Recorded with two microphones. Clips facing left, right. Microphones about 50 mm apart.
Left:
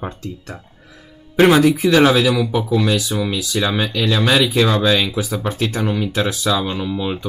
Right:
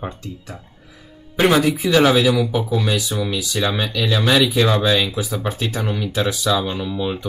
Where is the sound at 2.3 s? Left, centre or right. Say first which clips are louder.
Even; left.